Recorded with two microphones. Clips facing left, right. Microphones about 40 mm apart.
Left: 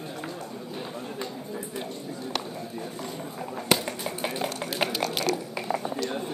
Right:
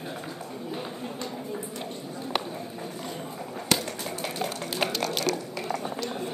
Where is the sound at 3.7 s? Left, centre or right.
Centre.